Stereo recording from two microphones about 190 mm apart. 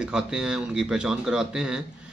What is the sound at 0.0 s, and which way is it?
A man's voice, 5° right (ahead or behind).